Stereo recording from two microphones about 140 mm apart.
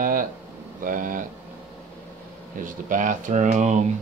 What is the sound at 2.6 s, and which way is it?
Speech, 70° right (ahead or behind).